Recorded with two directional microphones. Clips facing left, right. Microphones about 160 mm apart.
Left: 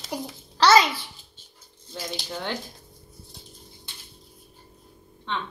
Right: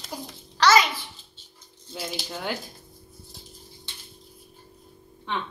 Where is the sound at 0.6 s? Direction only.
30° left (ahead or behind).